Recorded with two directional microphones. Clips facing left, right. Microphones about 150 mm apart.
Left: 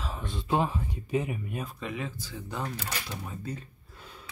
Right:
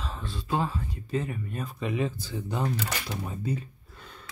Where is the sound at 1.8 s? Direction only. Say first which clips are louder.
Right 6 dB; 20° right (ahead or behind).